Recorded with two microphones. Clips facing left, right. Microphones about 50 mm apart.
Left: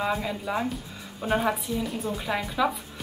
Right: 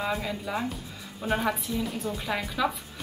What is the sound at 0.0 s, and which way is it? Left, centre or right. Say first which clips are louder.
A woman's voice: left 2 dB; centre.